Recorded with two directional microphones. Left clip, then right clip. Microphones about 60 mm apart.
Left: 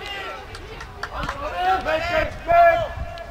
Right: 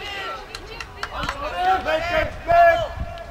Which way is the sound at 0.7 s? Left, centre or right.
Centre.